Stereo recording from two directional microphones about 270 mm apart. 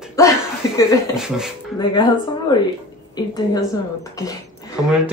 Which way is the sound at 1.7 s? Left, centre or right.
Centre.